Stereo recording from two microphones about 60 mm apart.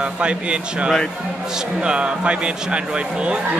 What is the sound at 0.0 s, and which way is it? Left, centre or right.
Speech, centre.